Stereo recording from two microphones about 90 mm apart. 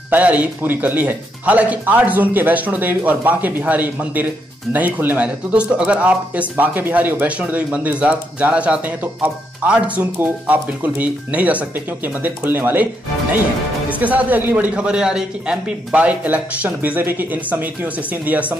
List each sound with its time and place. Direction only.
0.1 s speech: 15° right (ahead or behind)
13.8 s speech: 15° right (ahead or behind)